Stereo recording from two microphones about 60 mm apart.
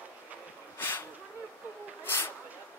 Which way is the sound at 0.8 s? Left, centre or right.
Left.